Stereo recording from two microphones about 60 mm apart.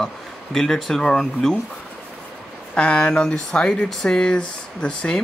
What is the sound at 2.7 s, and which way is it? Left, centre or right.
Speech, centre.